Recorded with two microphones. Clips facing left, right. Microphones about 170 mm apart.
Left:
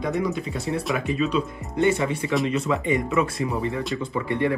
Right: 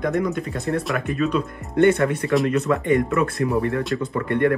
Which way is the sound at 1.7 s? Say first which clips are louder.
Right 5 dB; 60° right (ahead or behind).